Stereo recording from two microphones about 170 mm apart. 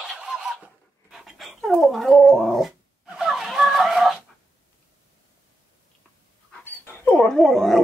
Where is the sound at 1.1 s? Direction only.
Centre (ahead or behind).